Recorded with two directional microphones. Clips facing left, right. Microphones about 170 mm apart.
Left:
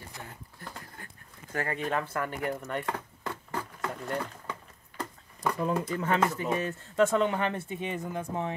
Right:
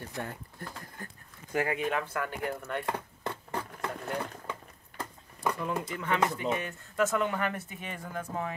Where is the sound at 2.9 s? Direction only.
20° right (ahead or behind).